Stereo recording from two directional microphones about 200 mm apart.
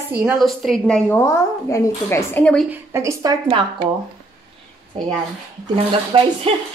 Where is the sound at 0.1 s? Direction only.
5° right (ahead or behind).